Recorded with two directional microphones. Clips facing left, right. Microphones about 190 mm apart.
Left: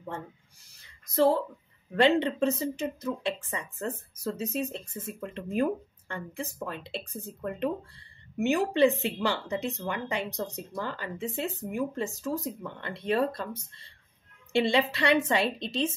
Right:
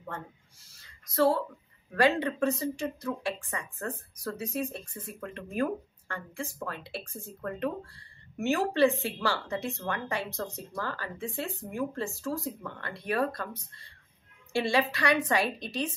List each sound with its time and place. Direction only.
1.1 s speech: 20° left (ahead or behind)